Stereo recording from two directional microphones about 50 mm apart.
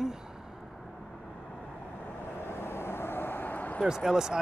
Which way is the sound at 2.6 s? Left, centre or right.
Left.